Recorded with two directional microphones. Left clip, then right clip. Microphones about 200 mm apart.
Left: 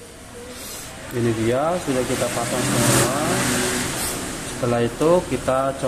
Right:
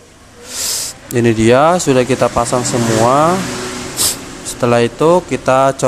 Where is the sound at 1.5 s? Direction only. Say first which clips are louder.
Right 12 dB; 35° right (ahead or behind).